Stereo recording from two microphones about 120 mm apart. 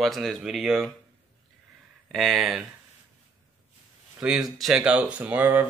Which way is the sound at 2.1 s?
5° left (ahead or behind).